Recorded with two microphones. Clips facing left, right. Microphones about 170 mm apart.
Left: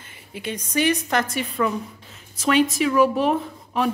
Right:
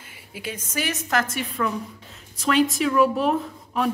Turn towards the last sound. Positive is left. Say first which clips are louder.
# left 1 dB
turn(degrees=0)  # may be behind; listen again after turning